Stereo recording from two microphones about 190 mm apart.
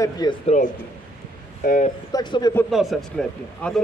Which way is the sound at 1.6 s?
50° left (ahead or behind).